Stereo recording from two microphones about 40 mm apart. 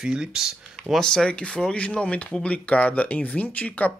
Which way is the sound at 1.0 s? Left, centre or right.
Centre.